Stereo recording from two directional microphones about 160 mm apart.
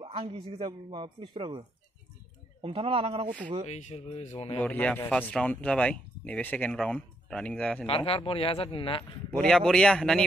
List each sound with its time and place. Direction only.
0.0 s a man's voice: 35° right (ahead or behind)
2.6 s a man's voice: 35° right (ahead or behind)
3.6 s speech: 45° left (ahead or behind)
4.6 s speech: 10° left (ahead or behind)
7.8 s speech: 35° left (ahead or behind)
9.4 s speech: 5° left (ahead or behind)